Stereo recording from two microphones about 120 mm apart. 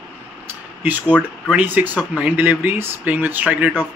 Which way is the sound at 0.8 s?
15° right (ahead or behind).